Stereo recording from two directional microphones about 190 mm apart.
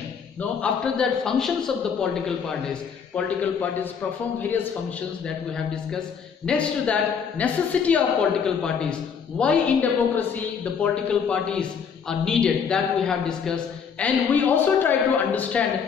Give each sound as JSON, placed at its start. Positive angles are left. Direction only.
{"t": 0.4, "sound": "speech", "side_deg": 5}
{"t": 5.7, "sound": "a man's voice", "side_deg": 5}